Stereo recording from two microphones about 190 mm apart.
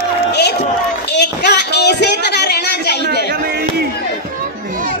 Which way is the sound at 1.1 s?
65° left (ahead or behind).